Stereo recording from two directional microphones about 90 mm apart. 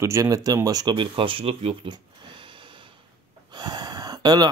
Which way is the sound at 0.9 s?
70° right (ahead or behind).